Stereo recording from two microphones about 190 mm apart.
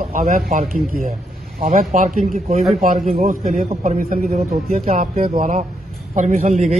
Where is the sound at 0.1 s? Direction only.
45° right (ahead or behind).